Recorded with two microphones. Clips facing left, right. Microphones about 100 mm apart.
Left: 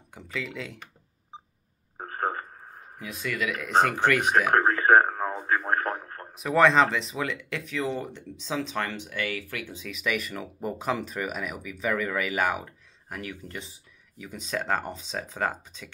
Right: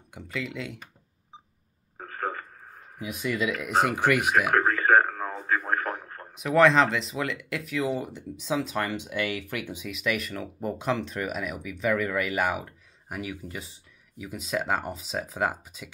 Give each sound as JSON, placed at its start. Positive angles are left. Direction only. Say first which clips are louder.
{"t": 0.1, "sound": "speech", "louder": "right 1 dB", "side_deg": 0}
{"t": 2.0, "sound": "radio", "louder": "left 3 dB", "side_deg": 30}
{"t": 3.0, "sound": "speech", "louder": "right 3 dB", "side_deg": -15}
{"t": 4.3, "sound": "a sound", "louder": "left 1 dB", "side_deg": 30}
{"t": 5.4, "sound": "radio", "louder": "even", "side_deg": 35}
{"t": 6.3, "sound": "speech", "louder": "right 1 dB", "side_deg": 0}
{"t": 9.8, "sound": "speech", "louder": "even", "side_deg": 0}